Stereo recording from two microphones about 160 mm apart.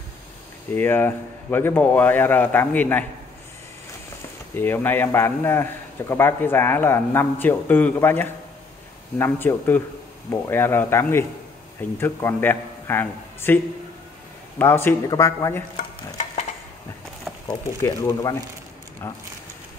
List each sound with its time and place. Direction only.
0.7 s a man's voice: 15° left (ahead or behind)
4.6 s a man's voice: 15° left (ahead or behind)
14.6 s a man's voice: 15° left (ahead or behind)
17.5 s a man's voice: 20° left (ahead or behind)